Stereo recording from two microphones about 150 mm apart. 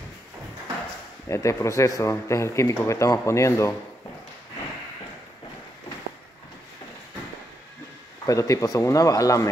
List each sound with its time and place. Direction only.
1.3 s speech: 20° left (ahead or behind)
8.3 s speech: 20° left (ahead or behind)